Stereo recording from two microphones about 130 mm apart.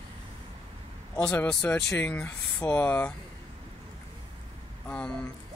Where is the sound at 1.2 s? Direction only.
10° left (ahead or behind).